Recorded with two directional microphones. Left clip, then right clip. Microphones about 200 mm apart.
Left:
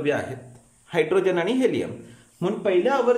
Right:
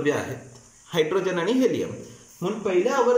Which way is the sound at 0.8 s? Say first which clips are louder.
Left 2 dB; 10° left (ahead or behind).